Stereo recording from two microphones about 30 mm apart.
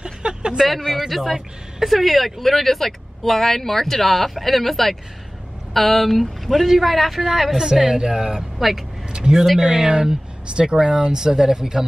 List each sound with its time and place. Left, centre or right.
0.0 s a sound: right
0.9 s speech: centre
7.5 s a woman's voice: centre
8.0 s speech: right
8.5 s speech: centre
9.6 s speech: right